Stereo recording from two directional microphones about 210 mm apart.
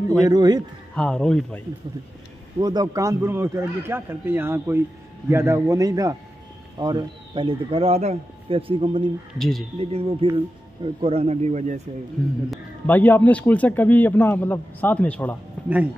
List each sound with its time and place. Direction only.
0.2 s speech: 20° right (ahead or behind)
0.9 s speech: 5° left (ahead or behind)
2.6 s speech: 20° right (ahead or behind)
9.4 s speech: centre (ahead or behind)
9.8 s speech: 25° right (ahead or behind)
12.4 s a man's voice: 10° left (ahead or behind)